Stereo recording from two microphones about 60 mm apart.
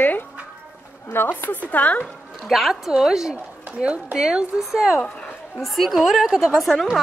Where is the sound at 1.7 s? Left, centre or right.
Left.